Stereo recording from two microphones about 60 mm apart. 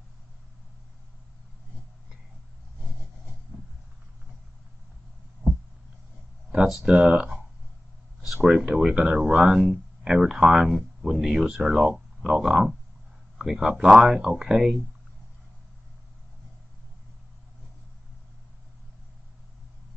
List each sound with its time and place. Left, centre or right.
6.9 s speech: centre
8.5 s speech: centre